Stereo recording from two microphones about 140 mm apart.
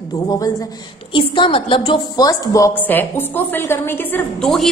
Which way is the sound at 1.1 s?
35° left (ahead or behind).